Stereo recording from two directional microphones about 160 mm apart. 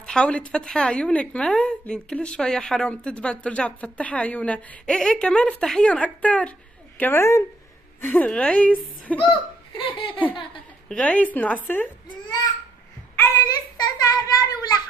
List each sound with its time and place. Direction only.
0.0 s a woman's voice: 5° left (ahead or behind)
9.2 s speech: 30° left (ahead or behind)
9.9 s laughter: 30° left (ahead or behind)
10.9 s a woman's voice: 10° left (ahead or behind)
12.1 s baby cry: 25° left (ahead or behind)
13.7 s a sound: 25° left (ahead or behind)